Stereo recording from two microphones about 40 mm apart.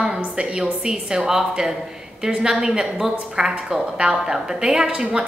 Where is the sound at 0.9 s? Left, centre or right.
Centre.